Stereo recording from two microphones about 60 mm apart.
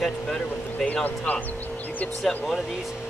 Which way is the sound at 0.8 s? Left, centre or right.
Left.